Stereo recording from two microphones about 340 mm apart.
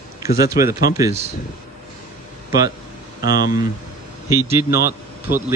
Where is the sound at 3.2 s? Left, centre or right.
Left.